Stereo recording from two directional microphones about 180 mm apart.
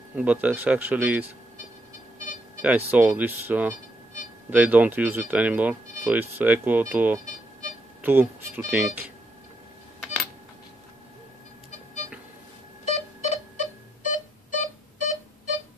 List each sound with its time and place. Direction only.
0.1 s speech: 10° right (ahead or behind)
2.1 s a sound: 45° left (ahead or behind)
2.6 s speech: 10° right (ahead or behind)
12.8 s pulse: 40° left (ahead or behind)